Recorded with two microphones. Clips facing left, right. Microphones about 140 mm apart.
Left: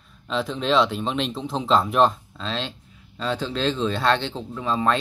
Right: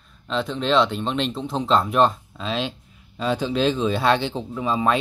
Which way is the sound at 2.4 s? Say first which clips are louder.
Right 4 dB; 10° right (ahead or behind).